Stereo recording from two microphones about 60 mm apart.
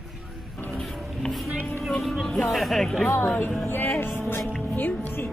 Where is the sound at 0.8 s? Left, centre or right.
Centre.